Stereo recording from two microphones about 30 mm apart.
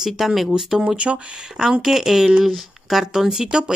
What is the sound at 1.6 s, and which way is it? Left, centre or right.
Speech, right.